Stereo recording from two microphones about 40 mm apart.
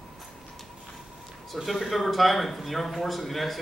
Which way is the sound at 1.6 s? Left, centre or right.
Centre.